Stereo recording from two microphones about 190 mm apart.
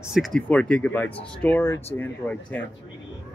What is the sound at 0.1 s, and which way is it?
A man's voice, centre (ahead or behind).